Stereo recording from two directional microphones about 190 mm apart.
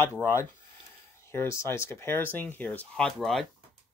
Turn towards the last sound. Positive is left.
turn(degrees=0)  # may be behind; listen again after turning